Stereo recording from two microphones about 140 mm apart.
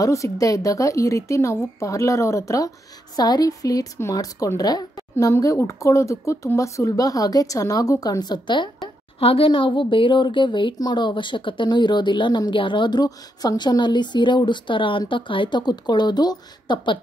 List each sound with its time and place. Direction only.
0.0 s speech: 25° left (ahead or behind)
8.8 s a woman's voice: 40° left (ahead or behind)